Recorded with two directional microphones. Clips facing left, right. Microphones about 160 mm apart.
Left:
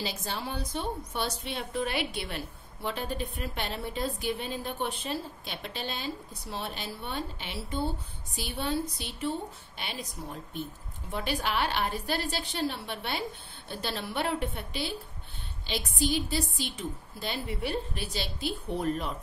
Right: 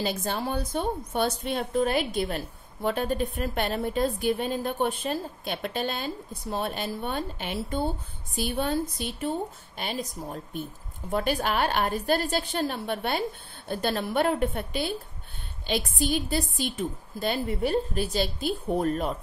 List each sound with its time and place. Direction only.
0.0 s a woman's voice: 50° right (ahead or behind)